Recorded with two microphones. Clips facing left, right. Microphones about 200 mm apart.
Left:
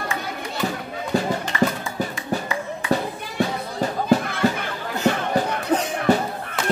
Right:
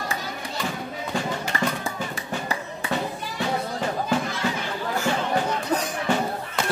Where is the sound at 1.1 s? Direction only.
40° left (ahead or behind).